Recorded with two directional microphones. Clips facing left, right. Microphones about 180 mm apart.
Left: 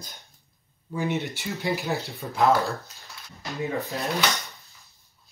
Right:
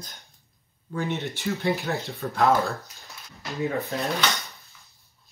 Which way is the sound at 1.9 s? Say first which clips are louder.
Right 1 dB; centre (ahead or behind).